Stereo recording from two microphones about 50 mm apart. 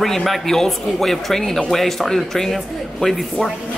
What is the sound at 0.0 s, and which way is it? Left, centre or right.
A man's voice, centre.